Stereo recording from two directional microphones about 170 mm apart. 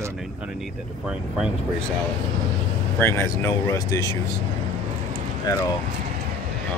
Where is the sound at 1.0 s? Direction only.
5° right (ahead or behind).